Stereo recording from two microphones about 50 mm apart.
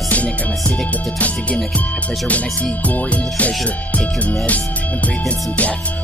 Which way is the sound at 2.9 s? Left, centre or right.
Left.